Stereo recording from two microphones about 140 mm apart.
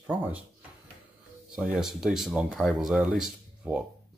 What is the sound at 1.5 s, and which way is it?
Speech, 5° right (ahead or behind).